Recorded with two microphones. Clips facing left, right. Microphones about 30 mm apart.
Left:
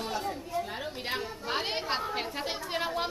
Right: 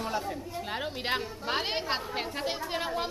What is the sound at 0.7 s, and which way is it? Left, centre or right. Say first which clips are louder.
Speech: right 3 dB; right.